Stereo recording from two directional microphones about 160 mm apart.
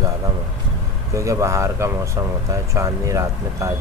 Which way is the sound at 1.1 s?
20° right (ahead or behind).